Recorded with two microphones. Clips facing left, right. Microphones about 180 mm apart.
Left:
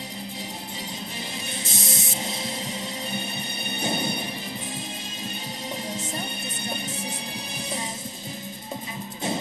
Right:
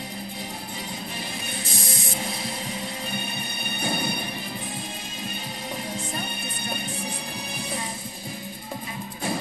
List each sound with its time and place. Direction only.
1.6 s mechanisms: 25° left (ahead or behind)
3.8 s music: 20° left (ahead or behind)